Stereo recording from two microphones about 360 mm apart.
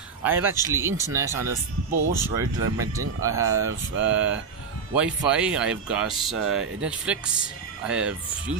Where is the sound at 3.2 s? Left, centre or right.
Centre.